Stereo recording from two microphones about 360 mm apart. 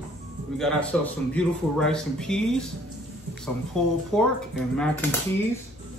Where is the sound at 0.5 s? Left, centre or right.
Centre.